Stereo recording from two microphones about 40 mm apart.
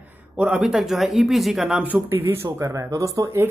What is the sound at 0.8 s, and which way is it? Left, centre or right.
A man's voice, centre.